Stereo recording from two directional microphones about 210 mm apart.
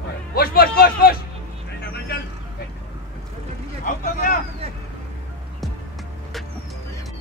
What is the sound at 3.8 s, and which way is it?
Boat, 40° left (ahead or behind).